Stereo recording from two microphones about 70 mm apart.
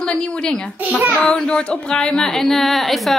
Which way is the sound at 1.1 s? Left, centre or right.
Centre.